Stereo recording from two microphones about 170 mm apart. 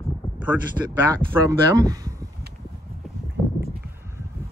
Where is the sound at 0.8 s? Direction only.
10° right (ahead or behind).